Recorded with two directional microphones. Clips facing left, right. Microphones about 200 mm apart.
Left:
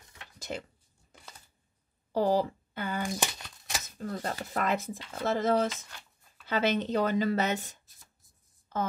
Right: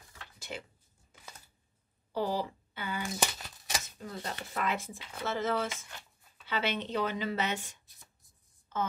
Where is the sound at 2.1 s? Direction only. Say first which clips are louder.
Left 6 dB; 45° left (ahead or behind).